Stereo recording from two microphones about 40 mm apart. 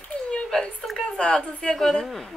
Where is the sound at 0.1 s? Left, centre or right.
Left.